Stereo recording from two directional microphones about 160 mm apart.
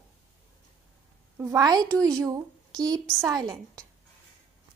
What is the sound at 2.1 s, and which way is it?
Speech, 20° right (ahead or behind).